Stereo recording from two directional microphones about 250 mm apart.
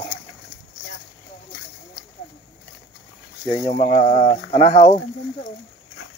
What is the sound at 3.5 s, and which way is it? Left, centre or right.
Speech, left.